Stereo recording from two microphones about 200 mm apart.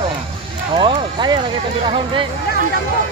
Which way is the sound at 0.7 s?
25° right (ahead or behind).